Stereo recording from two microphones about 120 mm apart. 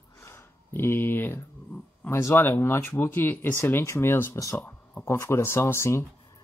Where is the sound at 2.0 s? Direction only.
20° left (ahead or behind).